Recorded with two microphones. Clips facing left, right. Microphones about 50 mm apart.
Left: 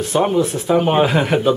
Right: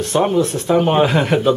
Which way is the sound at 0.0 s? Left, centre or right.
Centre.